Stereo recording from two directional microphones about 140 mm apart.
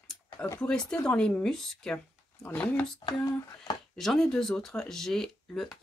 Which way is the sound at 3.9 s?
Centre (ahead or behind).